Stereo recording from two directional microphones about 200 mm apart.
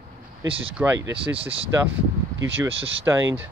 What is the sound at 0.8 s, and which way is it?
Speech, 10° right (ahead or behind).